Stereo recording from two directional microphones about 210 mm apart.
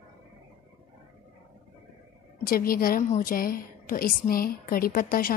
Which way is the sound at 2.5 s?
45° left (ahead or behind).